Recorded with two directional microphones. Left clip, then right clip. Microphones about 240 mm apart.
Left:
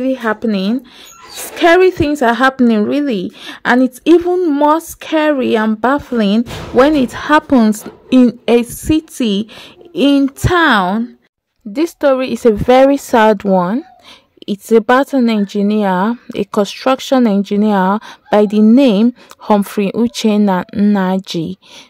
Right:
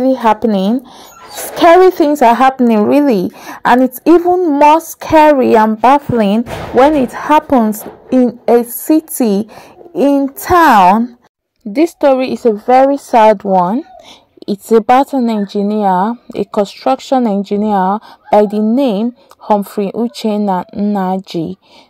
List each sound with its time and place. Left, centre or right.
0.2 s speech: centre
2.1 s a woman's voice: centre
2.9 s speech: centre
3.2 s a woman's voice: centre
5.0 s a woman's voice: centre
8.5 s speech: left
10.5 s speech: centre
12.4 s speech: left
14.4 s a woman's voice: centre